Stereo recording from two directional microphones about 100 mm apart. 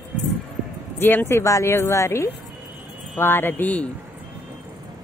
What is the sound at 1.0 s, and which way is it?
Speech, 20° left (ahead or behind).